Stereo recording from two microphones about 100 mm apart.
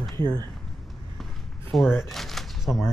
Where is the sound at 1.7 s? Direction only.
Centre (ahead or behind).